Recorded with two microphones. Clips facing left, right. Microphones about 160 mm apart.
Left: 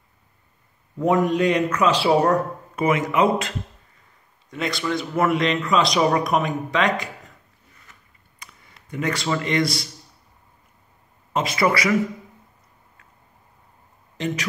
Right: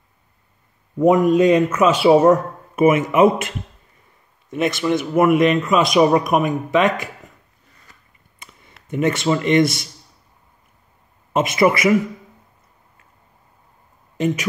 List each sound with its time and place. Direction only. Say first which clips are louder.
0.9 s a man's voice: right 6 dB; 20° right (ahead or behind)
8.4 s a sound: right 1 dB; 25° right (ahead or behind)
8.8 s speech: right 6 dB; 25° right (ahead or behind)
11.3 s speech: right 5 dB; 20° right (ahead or behind)
14.2 s speech: right 6 dB; 20° right (ahead or behind)